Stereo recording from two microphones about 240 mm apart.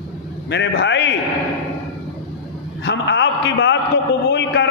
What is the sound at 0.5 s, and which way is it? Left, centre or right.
Speech, left.